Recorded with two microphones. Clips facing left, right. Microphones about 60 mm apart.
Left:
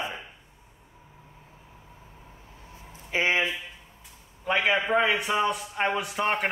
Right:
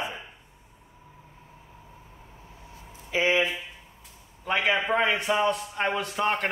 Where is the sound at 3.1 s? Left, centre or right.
Left.